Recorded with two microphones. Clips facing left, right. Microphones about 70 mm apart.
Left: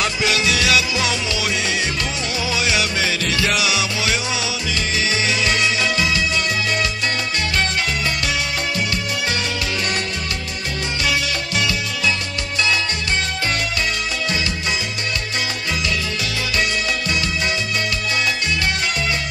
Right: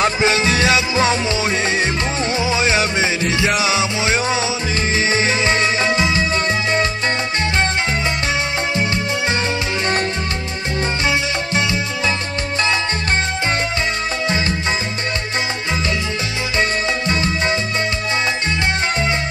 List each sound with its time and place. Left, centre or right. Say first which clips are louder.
0.0 s music: right 4 dB; right
11.1 s music: right 3 dB; right
17.1 s music: right 5 dB; right